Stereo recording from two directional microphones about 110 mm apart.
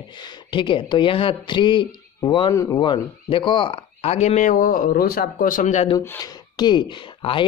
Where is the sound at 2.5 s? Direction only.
30° left (ahead or behind).